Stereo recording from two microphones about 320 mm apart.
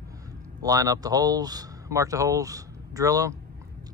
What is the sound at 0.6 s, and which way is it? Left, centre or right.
Speech, centre.